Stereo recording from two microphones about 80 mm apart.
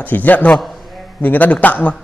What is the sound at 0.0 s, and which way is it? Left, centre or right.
A man's voice, left.